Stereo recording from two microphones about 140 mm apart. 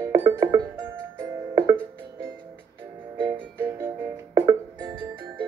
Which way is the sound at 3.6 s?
15° right (ahead or behind).